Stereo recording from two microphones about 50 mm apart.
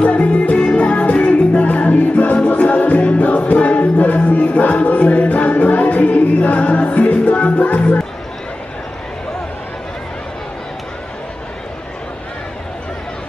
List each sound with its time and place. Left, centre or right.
0.1 s music: left